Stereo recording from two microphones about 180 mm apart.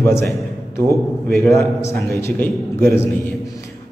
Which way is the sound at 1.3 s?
15° left (ahead or behind).